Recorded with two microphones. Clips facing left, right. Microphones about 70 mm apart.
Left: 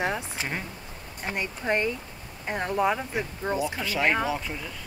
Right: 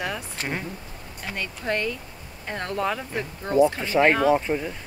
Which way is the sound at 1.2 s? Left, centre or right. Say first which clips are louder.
Left 1 dB; left.